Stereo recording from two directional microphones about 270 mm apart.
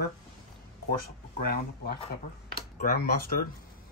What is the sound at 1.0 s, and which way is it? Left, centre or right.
Speech, left.